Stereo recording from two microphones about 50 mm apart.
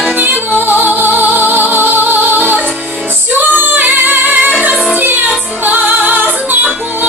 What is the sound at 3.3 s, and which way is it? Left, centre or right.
Female singing, right.